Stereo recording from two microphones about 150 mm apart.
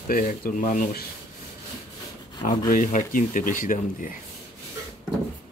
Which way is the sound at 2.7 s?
60° left (ahead or behind).